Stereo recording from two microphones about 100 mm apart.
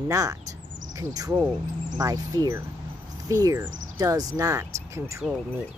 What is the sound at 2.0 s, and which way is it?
Speech, 35° right (ahead or behind).